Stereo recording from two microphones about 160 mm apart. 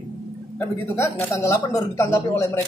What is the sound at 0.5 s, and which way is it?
Speech, 15° left (ahead or behind).